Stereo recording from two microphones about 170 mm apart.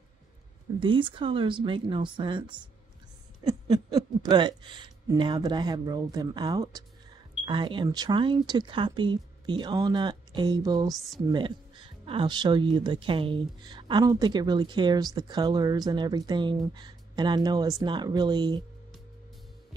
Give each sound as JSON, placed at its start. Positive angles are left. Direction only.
{"t": 0.7, "sound": "speech", "side_deg": -30}